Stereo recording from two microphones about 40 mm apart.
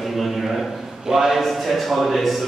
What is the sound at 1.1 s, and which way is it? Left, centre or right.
Speech, centre.